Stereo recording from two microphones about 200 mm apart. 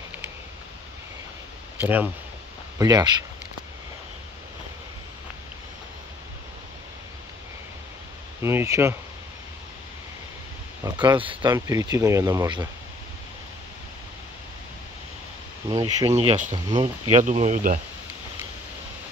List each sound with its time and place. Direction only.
1.8 s speech: 10° right (ahead or behind)
8.4 s speech: 10° right (ahead or behind)
10.8 s speech: 15° right (ahead or behind)
15.7 s speech: 20° right (ahead or behind)
16.2 s speech: 35° right (ahead or behind)
16.5 s speech: 20° right (ahead or behind)
17.1 s speech: 35° right (ahead or behind)